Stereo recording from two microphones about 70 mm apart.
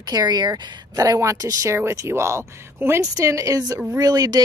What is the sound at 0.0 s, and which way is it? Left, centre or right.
Speech, right.